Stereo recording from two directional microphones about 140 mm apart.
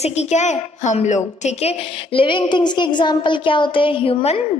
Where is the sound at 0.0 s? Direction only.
50° left (ahead or behind).